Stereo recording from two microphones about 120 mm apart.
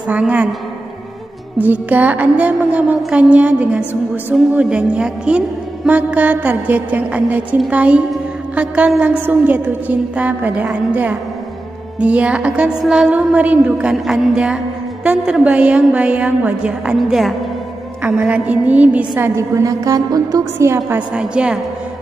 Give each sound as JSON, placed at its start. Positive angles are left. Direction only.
{"t": 0.1, "sound": "a woman's voice", "side_deg": -10}
{"t": 1.6, "sound": "a woman's voice", "side_deg": -15}
{"t": 21.1, "sound": "a woman's voice", "side_deg": -10}